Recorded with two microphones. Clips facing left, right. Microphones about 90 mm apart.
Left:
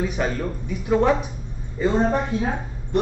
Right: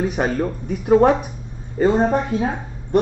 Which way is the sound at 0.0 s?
50° right (ahead or behind).